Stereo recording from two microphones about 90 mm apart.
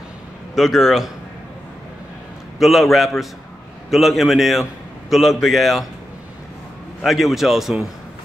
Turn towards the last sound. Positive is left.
turn(degrees=-5)  # may be behind; listen again after turning